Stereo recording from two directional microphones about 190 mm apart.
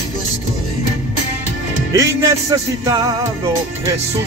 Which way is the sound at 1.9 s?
15° right (ahead or behind).